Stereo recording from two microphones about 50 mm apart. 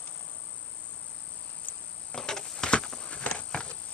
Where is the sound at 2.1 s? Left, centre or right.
Centre.